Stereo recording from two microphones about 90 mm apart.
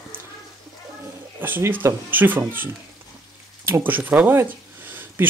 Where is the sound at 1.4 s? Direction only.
20° right (ahead or behind).